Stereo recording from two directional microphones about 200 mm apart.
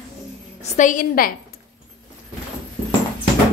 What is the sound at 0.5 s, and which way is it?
Speech, 40° left (ahead or behind).